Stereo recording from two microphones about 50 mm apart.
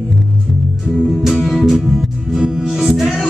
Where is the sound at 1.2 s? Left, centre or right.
Centre.